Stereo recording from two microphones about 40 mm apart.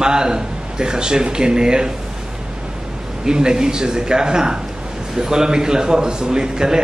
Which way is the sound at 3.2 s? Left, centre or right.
Centre.